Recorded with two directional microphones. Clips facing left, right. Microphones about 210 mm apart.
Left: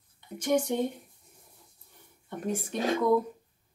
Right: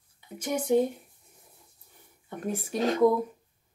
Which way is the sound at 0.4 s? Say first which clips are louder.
Left 1 dB; 5° right (ahead or behind).